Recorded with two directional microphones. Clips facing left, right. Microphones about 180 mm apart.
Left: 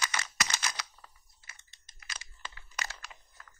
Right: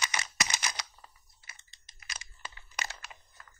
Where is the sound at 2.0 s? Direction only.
20° right (ahead or behind).